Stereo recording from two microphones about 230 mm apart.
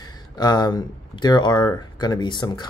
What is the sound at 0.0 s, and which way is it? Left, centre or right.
Speech, centre.